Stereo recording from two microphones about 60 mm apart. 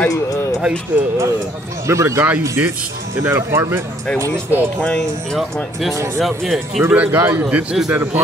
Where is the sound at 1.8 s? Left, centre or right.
Right.